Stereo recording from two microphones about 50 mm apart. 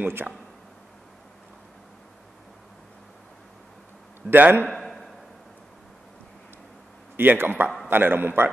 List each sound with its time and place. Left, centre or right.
0.0 s a man's voice: right
4.3 s a man's voice: right
4.6 s a sound: centre
7.2 s a man's voice: right